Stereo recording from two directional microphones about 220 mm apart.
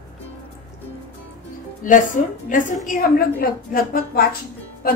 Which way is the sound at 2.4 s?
35° left (ahead or behind).